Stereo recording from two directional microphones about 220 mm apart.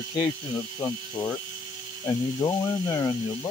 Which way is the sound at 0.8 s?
10° left (ahead or behind).